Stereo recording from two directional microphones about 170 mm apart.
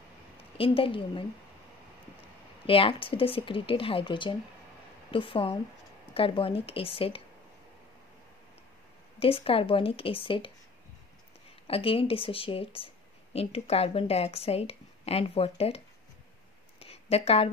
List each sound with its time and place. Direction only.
0.6 s speech: 30° left (ahead or behind)
2.6 s speech: 30° left (ahead or behind)
9.2 s speech: 35° left (ahead or behind)
11.6 s speech: 35° left (ahead or behind)
16.8 s a sound: 35° left (ahead or behind)